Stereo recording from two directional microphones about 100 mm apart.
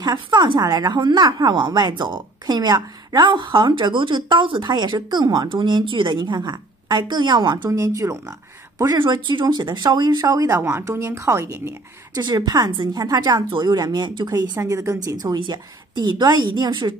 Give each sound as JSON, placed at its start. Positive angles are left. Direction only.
{"t": 0.0, "sound": "a woman's voice", "side_deg": -45}
{"t": 7.7, "sound": "speech", "side_deg": -30}
{"t": 8.9, "sound": "a woman's voice", "side_deg": -50}
{"t": 10.6, "sound": "a woman's voice", "side_deg": -25}
{"t": 12.2, "sound": "a woman's voice", "side_deg": -40}
{"t": 15.3, "sound": "a woman's voice", "side_deg": -50}